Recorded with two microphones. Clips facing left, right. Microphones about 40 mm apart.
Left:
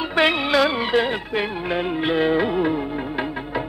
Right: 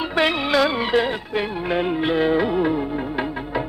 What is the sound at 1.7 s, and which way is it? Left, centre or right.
Music, centre.